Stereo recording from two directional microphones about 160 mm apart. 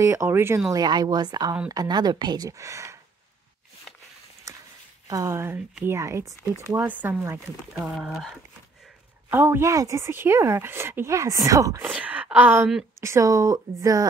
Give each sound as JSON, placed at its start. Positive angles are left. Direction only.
{"t": 0.0, "sound": "speech", "side_deg": -15}
{"t": 5.0, "sound": "speech", "side_deg": -20}
{"t": 7.7, "sound": "speech", "side_deg": -5}
{"t": 9.3, "sound": "speech", "side_deg": -15}